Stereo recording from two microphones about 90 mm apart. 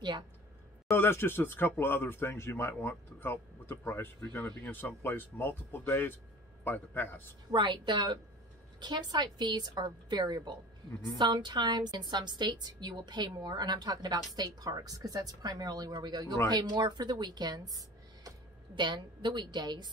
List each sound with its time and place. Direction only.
0.9 s speech: 25° left (ahead or behind)
7.5 s a woman's voice: 60° right (ahead or behind)
18.8 s a woman's voice: 60° right (ahead or behind)